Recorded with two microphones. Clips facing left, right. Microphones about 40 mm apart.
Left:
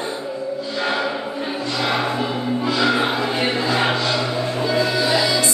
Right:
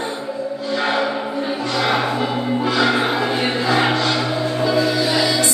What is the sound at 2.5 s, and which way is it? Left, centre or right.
Music, right.